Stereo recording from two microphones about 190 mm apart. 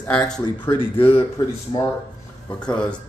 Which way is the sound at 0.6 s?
30° left (ahead or behind).